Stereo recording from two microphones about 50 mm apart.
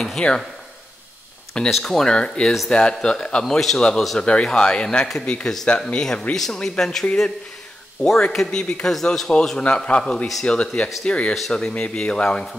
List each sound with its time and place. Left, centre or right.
0.0 s speech: centre
1.7 s a man's voice: centre
5.2 s speech: left
6.3 s a man's voice: centre